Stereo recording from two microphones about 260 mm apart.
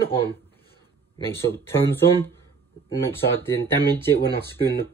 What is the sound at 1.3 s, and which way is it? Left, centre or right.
Speech, centre.